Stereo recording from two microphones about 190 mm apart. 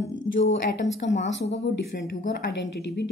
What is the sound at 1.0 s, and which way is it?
Speech, 60° left (ahead or behind).